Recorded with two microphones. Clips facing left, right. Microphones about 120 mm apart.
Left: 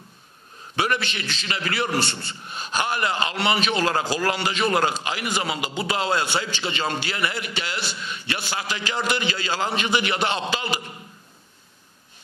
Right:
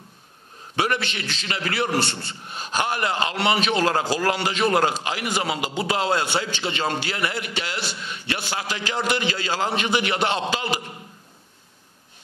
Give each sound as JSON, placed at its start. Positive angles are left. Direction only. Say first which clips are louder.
{"t": 0.7, "sound": "a man's voice", "louder": "right 1 dB", "side_deg": -50}
{"t": 6.1, "sound": "a man's voice", "louder": "right 1 dB", "side_deg": -35}
{"t": 6.5, "sound": "a man's voice", "louder": "right 1 dB", "side_deg": -55}